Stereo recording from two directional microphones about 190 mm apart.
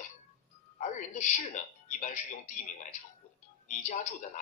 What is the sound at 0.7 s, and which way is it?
Speech, 40° left (ahead or behind).